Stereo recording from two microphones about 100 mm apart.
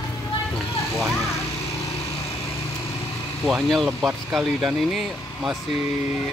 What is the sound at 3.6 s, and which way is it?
Speech, centre (ahead or behind).